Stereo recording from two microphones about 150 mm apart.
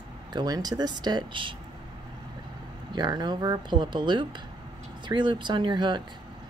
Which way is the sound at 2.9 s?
30° right (ahead or behind).